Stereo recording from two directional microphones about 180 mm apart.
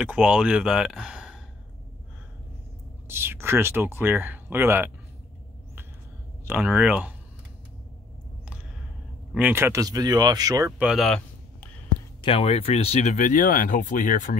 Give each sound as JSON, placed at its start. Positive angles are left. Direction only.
{"t": 0.0, "sound": "speech", "side_deg": -5}
{"t": 3.1, "sound": "speech", "side_deg": -15}
{"t": 6.4, "sound": "speech", "side_deg": -10}
{"t": 9.3, "sound": "speech", "side_deg": -10}
{"t": 10.8, "sound": "a sound", "side_deg": 0}
{"t": 12.2, "sound": "speech", "side_deg": 30}